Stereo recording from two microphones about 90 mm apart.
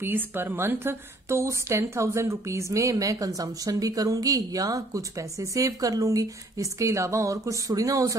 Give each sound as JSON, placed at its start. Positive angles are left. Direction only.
{"t": 0.0, "sound": "a woman's voice", "side_deg": -25}